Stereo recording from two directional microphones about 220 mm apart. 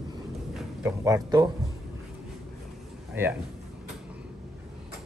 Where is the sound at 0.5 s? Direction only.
10° right (ahead or behind).